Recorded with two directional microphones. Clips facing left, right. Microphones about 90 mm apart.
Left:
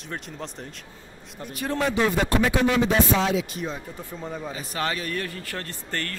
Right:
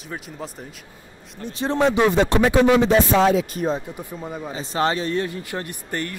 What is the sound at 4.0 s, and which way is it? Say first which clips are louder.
Speech: right 2 dB; 10° right (ahead or behind).